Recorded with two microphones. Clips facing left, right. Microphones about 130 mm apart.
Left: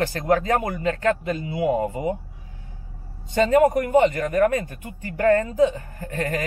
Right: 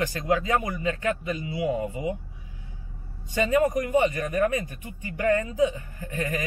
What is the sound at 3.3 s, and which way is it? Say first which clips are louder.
Speech: left 5 dB; 45° left (ahead or behind).